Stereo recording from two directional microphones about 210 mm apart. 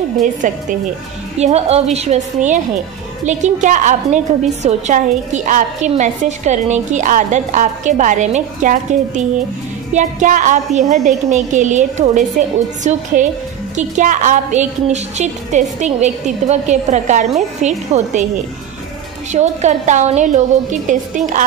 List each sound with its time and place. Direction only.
1.4 s a woman's voice: 30° right (ahead or behind)
19.3 s a woman's voice: 35° right (ahead or behind)